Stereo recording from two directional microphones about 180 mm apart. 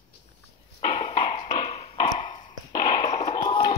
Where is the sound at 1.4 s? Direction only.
25° left (ahead or behind).